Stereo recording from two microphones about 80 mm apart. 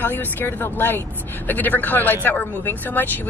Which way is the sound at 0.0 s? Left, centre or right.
Left.